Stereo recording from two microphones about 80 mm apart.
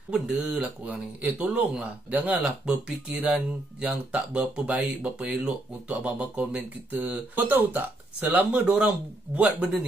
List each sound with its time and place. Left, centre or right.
0.1 s speech: centre